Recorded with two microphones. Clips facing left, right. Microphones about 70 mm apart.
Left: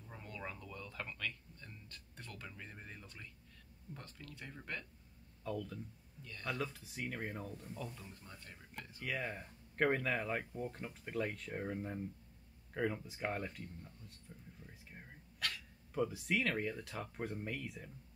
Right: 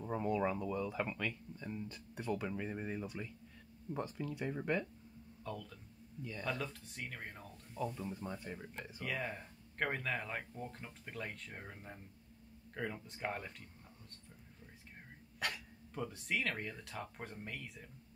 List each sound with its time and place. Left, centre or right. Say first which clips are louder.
0.2 s speech: right 12 dB; centre
5.4 s speech: left 4 dB; centre
7.7 s speech: right 10 dB; centre
8.3 s speech: right 10 dB; centre
9.0 s speech: even; centre
15.3 s dog: right 2 dB; centre
15.9 s speech: left 4 dB; centre